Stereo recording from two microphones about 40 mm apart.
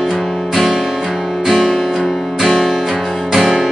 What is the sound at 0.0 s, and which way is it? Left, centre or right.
Guitar, centre.